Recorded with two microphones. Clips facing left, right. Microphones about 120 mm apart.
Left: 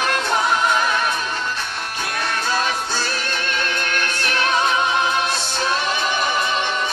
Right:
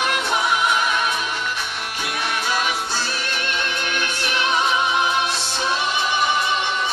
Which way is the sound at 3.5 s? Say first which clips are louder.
Left 2 dB; 15° right (ahead or behind).